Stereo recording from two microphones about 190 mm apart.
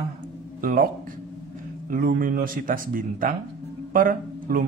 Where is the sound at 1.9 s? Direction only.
45° right (ahead or behind).